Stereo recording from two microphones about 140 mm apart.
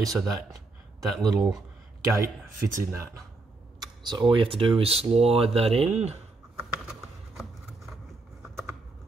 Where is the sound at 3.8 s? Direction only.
30° right (ahead or behind); by 6.2 s 50° right (ahead or behind).